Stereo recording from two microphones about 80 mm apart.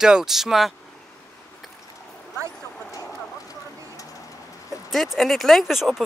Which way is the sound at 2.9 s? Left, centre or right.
Left.